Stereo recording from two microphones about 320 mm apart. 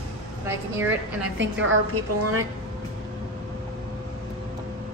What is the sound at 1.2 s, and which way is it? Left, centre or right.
A woman's voice, right.